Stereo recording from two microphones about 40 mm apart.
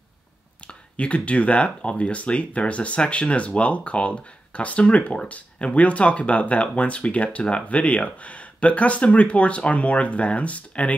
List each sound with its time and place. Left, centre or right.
0.7 s speech: left